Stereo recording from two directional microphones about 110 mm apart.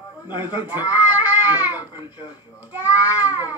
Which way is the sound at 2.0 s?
40° left (ahead or behind).